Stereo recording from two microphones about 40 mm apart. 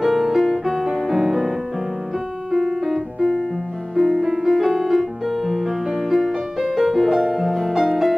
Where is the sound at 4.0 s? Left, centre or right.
Centre.